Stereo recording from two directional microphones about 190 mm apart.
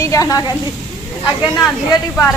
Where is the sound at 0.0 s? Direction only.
15° left (ahead or behind).